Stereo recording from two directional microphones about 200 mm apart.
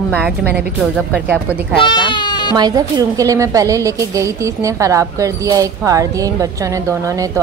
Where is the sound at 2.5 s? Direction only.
20° right (ahead or behind).